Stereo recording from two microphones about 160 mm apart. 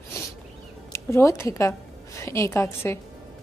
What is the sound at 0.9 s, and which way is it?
Speech, 20° left (ahead or behind).